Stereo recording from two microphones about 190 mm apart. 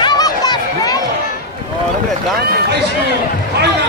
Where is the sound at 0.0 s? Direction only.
20° left (ahead or behind).